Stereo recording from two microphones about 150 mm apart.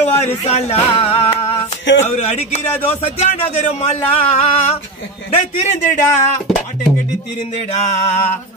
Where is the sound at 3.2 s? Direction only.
45° left (ahead or behind).